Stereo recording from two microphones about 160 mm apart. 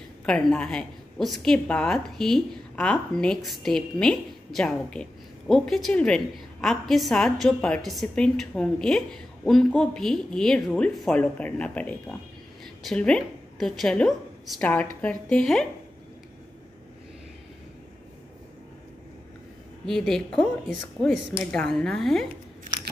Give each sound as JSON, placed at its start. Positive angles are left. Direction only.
{"t": 0.2, "sound": "a woman's voice", "side_deg": 5}
{"t": 19.9, "sound": "a woman's voice", "side_deg": 5}